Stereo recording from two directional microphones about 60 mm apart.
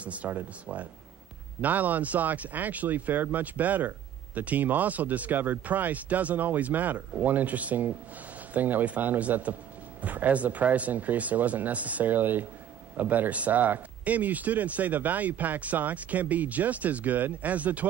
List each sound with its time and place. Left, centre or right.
0.0 s speech: right
1.6 s speech: right